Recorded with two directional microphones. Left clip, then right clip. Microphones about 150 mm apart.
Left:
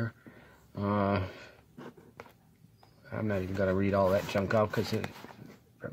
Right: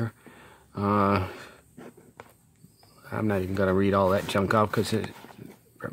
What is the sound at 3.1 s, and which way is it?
Speech, 35° right (ahead or behind).